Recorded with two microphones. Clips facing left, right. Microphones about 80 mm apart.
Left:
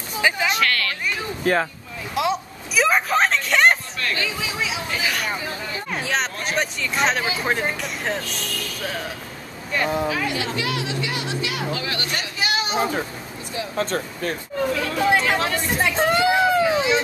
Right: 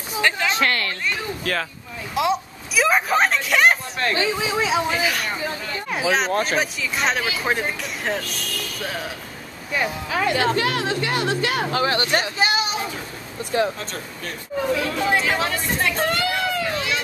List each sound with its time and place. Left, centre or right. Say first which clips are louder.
0.2 s a sound: even; centre
0.6 s a sound: right 1 dB; right
1.4 s speech: left 7 dB; left
2.1 s a sound: right 1 dB; centre
4.0 s speech: right 4 dB; right
4.6 s speech: right 8 dB; right
4.9 s speech: right 1 dB; centre
9.8 s speech: left 7 dB; left
10.1 s speech: right 5 dB; right
13.7 s speech: left 8 dB; left
14.7 s speech: left 1 dB; centre
16.0 s a sound: left 5 dB; centre